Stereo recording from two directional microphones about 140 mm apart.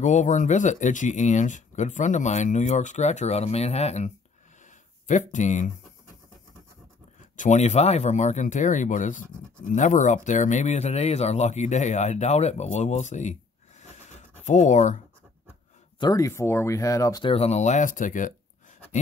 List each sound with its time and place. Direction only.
0.0 s speech: 60° left (ahead or behind)
5.0 s speech: 60° left (ahead or behind)
7.3 s speech: 60° left (ahead or behind)
16.0 s speech: 25° left (ahead or behind)
17.2 s speech: 45° left (ahead or behind); by 18.3 s 65° left (ahead or behind)